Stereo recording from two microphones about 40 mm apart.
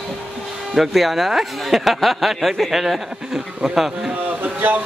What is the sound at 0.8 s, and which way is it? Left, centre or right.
Speech, centre.